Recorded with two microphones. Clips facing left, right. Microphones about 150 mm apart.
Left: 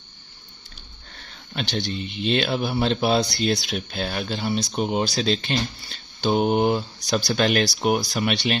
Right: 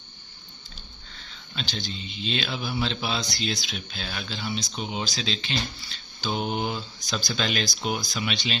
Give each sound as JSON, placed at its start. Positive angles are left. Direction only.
{"t": 1.1, "sound": "speech", "side_deg": 55}